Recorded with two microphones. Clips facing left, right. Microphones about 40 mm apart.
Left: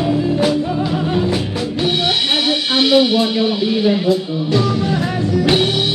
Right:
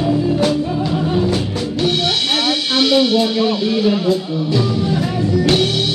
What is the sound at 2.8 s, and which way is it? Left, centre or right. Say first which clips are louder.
Speech: left 1 dB; centre.